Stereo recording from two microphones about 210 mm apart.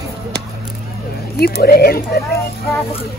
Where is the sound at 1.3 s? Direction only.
45° left (ahead or behind).